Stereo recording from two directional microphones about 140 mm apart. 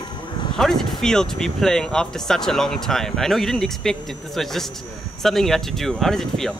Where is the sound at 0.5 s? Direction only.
5° left (ahead or behind).